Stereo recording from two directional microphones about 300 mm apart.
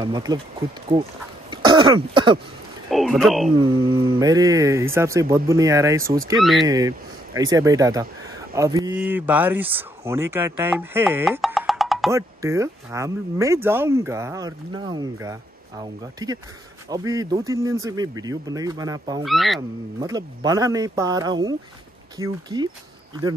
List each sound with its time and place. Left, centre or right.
0.0 s speech: centre
1.5 s throat clearing: centre
2.9 s speech: centre
3.5 s speech: centre
19.2 s speech: centre
20.0 s speech: centre